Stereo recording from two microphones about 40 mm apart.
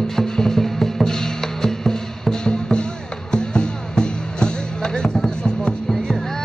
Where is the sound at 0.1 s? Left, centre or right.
Centre.